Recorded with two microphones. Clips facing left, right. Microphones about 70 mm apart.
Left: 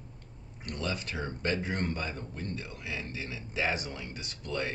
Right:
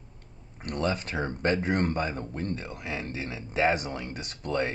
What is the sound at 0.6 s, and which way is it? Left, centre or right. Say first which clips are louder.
Speech: right 6 dB; right.